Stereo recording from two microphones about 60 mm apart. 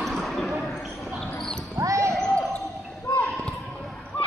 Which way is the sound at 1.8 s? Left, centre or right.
Right.